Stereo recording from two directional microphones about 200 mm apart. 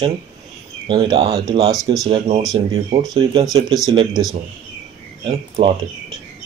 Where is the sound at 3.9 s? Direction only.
25° right (ahead or behind).